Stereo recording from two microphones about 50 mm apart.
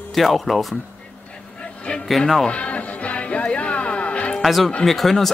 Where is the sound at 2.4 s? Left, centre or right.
Left.